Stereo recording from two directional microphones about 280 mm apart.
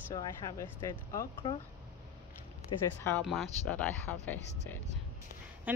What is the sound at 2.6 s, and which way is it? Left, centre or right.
Speech, centre.